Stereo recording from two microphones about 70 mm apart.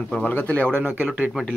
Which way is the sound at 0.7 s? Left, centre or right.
Right.